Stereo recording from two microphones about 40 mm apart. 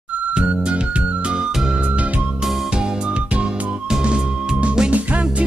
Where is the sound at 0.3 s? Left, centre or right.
Right.